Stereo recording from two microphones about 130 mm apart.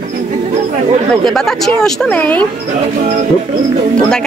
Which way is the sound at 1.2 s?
5° left (ahead or behind).